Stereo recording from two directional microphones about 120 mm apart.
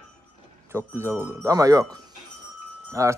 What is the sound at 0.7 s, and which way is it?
Speech, 20° right (ahead or behind).